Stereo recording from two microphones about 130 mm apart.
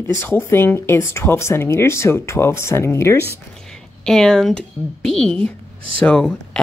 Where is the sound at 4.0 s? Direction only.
5° left (ahead or behind).